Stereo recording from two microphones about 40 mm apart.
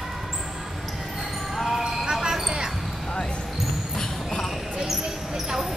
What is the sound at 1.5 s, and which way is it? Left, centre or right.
Basketball bounce, centre.